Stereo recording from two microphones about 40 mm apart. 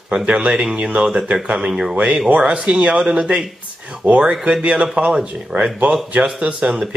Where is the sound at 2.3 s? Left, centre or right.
Right.